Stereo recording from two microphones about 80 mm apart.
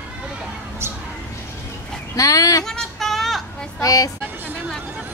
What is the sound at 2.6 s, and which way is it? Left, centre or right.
Female singing, centre.